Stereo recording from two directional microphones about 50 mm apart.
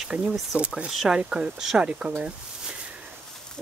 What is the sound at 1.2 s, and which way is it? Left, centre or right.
Speech, centre.